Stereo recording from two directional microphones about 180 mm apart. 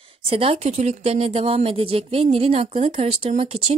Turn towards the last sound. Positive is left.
turn(degrees=-35)  # may be behind; listen again after turning